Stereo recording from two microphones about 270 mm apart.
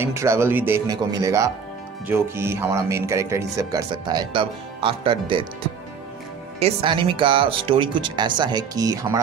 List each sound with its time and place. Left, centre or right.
0.0 s speech: centre
6.6 s speech: centre